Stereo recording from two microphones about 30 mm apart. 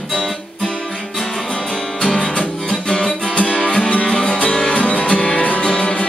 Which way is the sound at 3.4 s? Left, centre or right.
Left.